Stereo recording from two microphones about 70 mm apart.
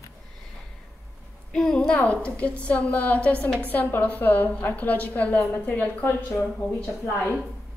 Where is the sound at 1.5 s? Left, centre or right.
Centre; by 6.4 s left.